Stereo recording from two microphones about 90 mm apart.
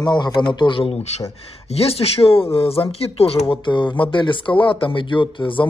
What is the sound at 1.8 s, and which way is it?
Speech, 90° left.